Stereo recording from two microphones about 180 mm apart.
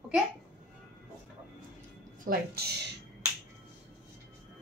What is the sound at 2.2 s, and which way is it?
Speech, 55° right (ahead or behind).